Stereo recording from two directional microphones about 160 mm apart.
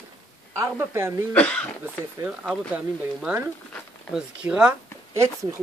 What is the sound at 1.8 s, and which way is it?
Speech, 10° right (ahead or behind).